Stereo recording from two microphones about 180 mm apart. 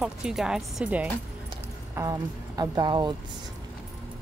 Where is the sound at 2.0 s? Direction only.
20° right (ahead or behind).